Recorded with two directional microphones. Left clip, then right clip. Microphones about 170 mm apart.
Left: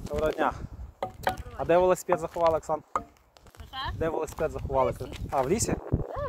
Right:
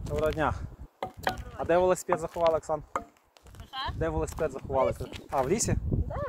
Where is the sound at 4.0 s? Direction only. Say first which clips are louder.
Left 2 dB; 25° left (ahead or behind).